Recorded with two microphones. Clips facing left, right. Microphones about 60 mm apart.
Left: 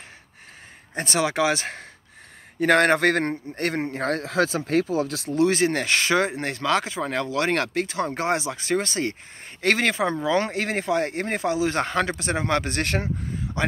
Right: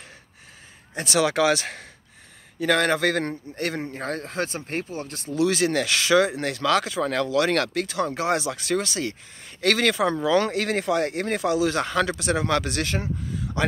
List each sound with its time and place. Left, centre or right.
0.9 s speech: left
1.2 s speech: left
2.6 s a man's voice: left
3.9 s speech: left
5.3 s speech: left
12.8 s speech: left
13.6 s speech: left